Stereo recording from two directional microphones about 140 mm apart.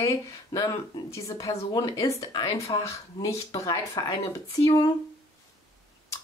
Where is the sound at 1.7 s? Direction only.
25° left (ahead or behind).